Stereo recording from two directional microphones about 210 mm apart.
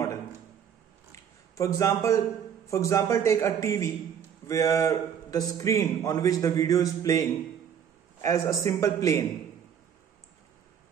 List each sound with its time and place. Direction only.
1.1 s a man's voice: 15° left (ahead or behind)